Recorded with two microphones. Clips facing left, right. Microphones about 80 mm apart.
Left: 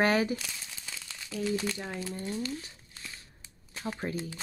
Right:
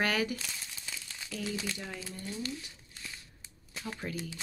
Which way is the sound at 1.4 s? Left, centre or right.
Left.